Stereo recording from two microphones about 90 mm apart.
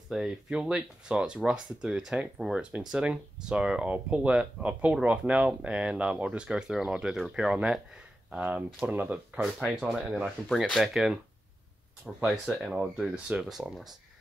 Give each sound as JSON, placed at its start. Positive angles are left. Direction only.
{"t": 0.1, "sound": "speech", "side_deg": -10}
{"t": 8.4, "sound": "speech", "side_deg": -20}
{"t": 9.4, "sound": "speech", "side_deg": 0}
{"t": 12.2, "sound": "speech", "side_deg": -10}